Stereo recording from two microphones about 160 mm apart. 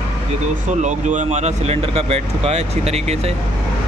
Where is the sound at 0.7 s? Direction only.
50° right (ahead or behind).